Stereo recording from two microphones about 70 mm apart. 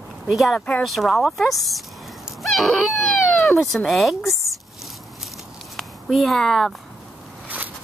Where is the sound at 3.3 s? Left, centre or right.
Centre.